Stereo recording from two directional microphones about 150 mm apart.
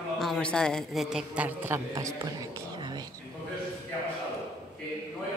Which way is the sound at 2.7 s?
30° right (ahead or behind).